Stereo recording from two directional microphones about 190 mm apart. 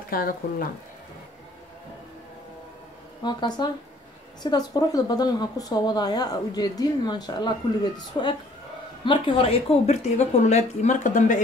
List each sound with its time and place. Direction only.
0.1 s speech: 50° left (ahead or behind)
3.3 s speech: 20° left (ahead or behind)
9.0 s a woman's voice: 25° left (ahead or behind)